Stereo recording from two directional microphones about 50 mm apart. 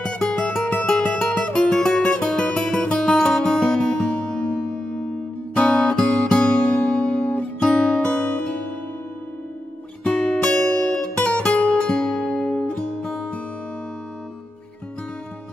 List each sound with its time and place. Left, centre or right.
0.0 s music: centre
7.2 s music: left
8.2 s music: left
10.0 s music: centre
12.4 s music: centre